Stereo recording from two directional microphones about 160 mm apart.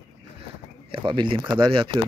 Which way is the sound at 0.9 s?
30° right (ahead or behind).